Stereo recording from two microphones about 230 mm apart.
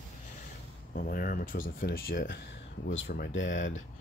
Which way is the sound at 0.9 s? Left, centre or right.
Left.